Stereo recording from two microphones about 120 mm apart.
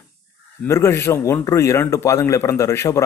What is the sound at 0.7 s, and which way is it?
A man's voice, 20° left (ahead or behind).